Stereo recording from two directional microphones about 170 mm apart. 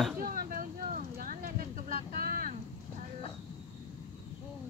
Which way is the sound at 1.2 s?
55° right (ahead or behind).